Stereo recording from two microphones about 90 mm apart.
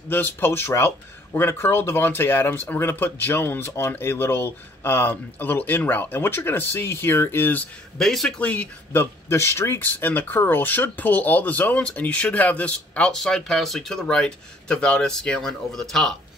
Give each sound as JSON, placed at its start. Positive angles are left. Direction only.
{"t": 0.1, "sound": "speech", "side_deg": 25}
{"t": 8.0, "sound": "speech", "side_deg": 5}
{"t": 8.4, "sound": "speech", "side_deg": 15}